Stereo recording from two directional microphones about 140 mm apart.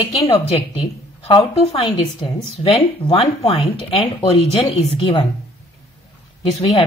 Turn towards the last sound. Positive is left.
turn(degrees=40)  # may be behind; listen again after turning